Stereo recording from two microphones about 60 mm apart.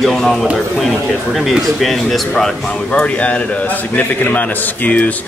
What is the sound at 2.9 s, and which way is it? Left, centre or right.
A man's voice, left.